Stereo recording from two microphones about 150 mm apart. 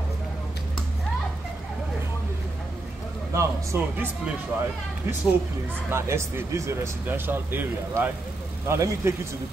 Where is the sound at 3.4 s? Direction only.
15° right (ahead or behind).